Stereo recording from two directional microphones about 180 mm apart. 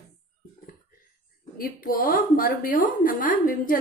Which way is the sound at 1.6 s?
55° left (ahead or behind).